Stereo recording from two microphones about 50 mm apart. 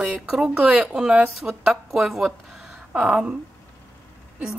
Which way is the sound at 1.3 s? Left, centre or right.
Centre.